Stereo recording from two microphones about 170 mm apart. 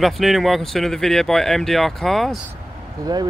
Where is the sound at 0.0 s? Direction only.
Centre (ahead or behind).